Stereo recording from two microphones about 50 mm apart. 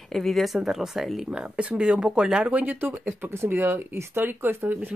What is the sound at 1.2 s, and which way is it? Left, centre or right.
Speech, centre.